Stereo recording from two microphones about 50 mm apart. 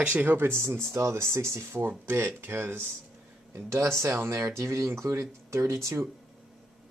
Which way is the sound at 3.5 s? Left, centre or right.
Right.